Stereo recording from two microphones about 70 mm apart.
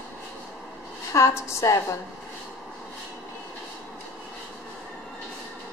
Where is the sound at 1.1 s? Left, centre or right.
Left.